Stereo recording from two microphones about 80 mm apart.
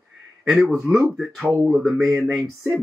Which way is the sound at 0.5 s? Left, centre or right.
Centre.